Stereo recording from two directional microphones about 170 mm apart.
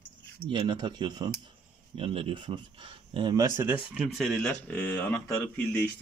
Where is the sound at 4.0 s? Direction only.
5° left (ahead or behind).